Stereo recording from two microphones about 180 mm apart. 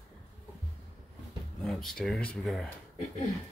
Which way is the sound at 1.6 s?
Centre (ahead or behind).